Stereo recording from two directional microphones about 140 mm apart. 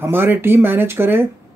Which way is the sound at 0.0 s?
15° right (ahead or behind).